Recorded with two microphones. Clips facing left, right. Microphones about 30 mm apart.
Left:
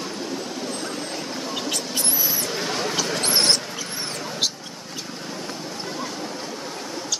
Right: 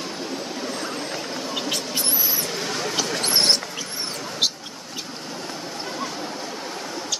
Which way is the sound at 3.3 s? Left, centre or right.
Centre.